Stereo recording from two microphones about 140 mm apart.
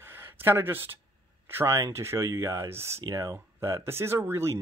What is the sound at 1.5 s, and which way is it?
Speech, 20° right (ahead or behind).